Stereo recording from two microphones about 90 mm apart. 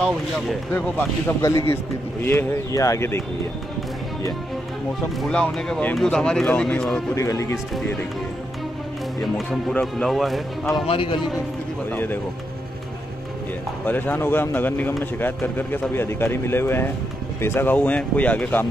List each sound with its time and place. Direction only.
0.7 s speech: 20° left (ahead or behind)
5.2 s speech: 10° left (ahead or behind)
7.2 s speech: 35° left (ahead or behind)
9.2 s a man's voice: 5° left (ahead or behind)
10.9 s a man's voice: 70° left (ahead or behind)
11.9 s speech: 20° left (ahead or behind)
13.8 s speech: 20° left (ahead or behind)